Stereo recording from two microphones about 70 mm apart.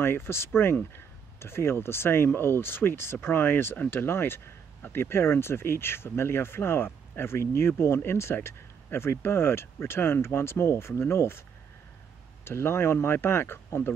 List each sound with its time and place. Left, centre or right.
0.0 s speech: left
12.4 s speech: left